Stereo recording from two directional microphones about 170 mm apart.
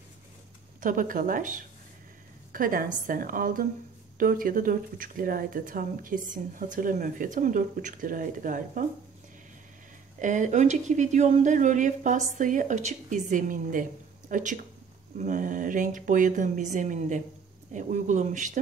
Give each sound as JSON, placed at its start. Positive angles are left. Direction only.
{"t": 0.7, "sound": "a woman's voice", "side_deg": -55}
{"t": 10.1, "sound": "speech", "side_deg": -45}